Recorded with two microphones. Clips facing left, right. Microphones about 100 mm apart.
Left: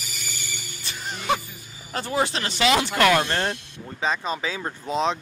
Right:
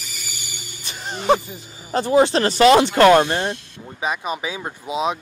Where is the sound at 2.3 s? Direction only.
40° right (ahead or behind).